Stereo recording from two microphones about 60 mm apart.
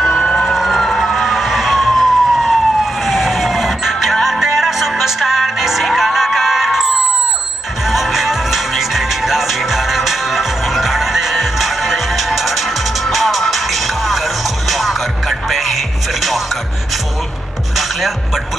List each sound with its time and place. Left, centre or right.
0.5 s emergency vehicle: centre
7.9 s music: centre